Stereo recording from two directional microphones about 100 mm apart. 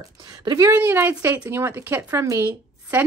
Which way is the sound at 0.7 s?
20° right (ahead or behind).